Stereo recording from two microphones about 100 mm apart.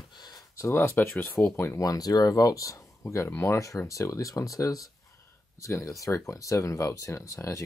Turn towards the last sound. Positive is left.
turn(degrees=30)  # may be behind; listen again after turning